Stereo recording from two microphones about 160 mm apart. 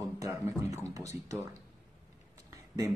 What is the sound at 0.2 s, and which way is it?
Music, 20° right (ahead or behind).